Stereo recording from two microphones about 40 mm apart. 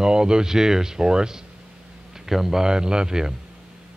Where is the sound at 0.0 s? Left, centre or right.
Centre.